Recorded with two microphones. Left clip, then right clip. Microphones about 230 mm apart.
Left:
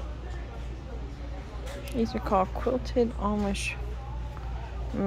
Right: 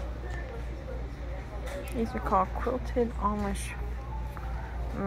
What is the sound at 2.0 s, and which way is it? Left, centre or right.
Speech, left.